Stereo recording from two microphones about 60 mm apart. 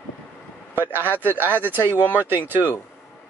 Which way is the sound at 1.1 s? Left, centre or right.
Right.